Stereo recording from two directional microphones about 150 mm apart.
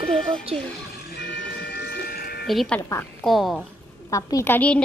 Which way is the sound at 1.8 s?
90° left.